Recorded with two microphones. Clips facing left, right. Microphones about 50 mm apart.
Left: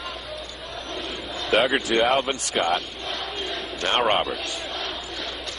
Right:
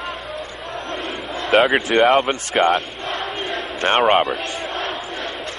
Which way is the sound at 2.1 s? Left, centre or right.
Right.